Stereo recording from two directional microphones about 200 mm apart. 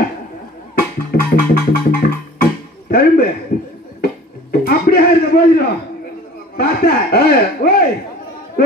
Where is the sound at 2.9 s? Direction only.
50° left (ahead or behind).